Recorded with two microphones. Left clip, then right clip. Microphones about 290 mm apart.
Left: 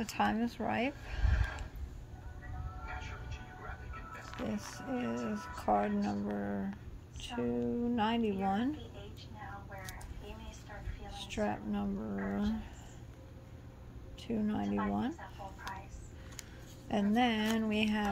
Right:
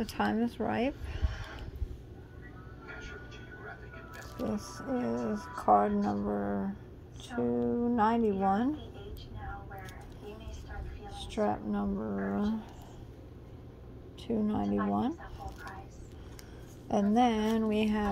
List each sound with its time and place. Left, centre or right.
0.1 s speech: centre
4.6 s speech: centre
4.9 s speech: centre
11.1 s a woman's voice: centre
14.2 s speech: centre
16.8 s speech: centre